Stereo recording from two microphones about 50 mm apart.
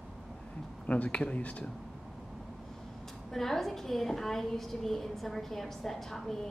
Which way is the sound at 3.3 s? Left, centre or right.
Centre.